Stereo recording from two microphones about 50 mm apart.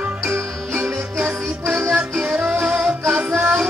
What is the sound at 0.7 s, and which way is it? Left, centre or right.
Music, right.